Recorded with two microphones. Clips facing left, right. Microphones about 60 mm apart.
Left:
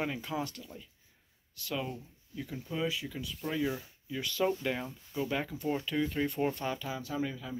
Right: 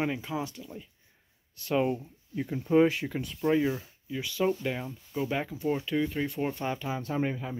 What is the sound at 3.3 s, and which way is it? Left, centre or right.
Speech, right.